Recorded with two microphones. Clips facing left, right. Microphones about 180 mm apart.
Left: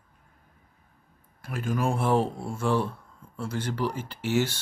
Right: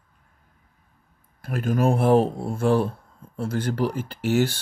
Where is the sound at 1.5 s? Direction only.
50° right (ahead or behind).